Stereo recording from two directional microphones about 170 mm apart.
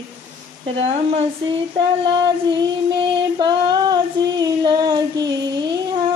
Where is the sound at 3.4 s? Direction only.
25° right (ahead or behind).